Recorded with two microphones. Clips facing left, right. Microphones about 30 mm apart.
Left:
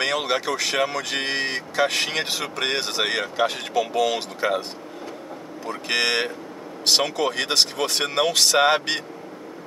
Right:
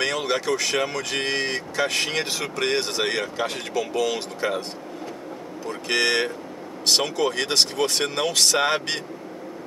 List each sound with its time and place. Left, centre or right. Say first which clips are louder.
0.0 s speech: left 1 dB; centre
5.7 s speech: even; centre